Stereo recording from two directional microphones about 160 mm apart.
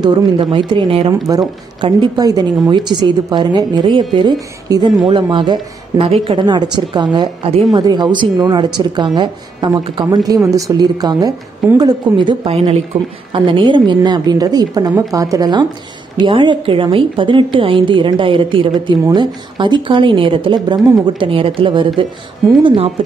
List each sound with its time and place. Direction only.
0.0 s a woman's voice: 25° right (ahead or behind)
1.2 s a woman's voice: 25° right (ahead or behind)